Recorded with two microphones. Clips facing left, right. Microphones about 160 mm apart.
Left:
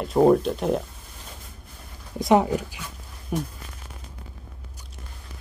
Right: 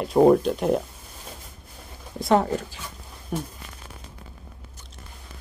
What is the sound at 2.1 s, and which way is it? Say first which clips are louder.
Speech: left 2 dB; 15° left (ahead or behind).